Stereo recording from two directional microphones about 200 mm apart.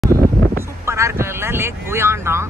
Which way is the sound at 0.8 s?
15° right (ahead or behind).